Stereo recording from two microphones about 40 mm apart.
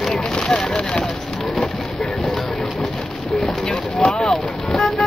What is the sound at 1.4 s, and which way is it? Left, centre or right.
Music, centre.